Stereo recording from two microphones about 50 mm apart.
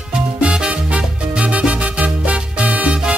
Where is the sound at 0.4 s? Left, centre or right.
Right.